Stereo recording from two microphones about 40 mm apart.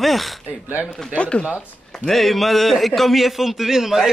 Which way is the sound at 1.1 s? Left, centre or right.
Left.